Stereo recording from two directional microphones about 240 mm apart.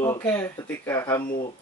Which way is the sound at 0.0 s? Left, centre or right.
Centre.